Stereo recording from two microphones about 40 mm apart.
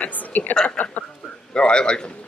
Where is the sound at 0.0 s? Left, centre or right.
Left.